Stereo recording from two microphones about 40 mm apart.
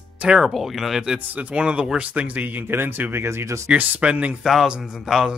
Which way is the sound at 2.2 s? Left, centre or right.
Right.